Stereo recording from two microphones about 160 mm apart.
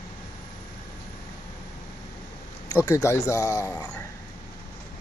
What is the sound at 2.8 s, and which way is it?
Speech, 20° left (ahead or behind).